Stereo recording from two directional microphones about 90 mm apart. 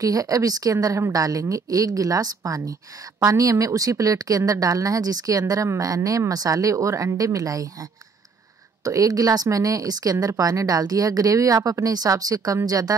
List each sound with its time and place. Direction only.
0.0 s a woman's voice: 40° right (ahead or behind)